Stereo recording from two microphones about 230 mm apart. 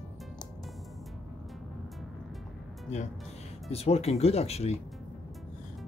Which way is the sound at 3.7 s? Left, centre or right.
Left.